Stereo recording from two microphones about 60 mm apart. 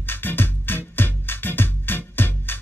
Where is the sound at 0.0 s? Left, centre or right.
Left.